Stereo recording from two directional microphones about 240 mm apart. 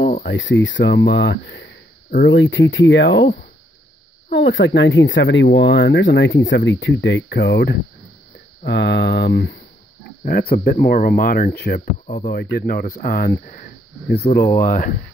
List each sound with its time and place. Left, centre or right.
0.2 s speech: left